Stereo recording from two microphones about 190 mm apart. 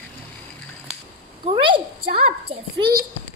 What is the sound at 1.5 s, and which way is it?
Speech, 25° right (ahead or behind).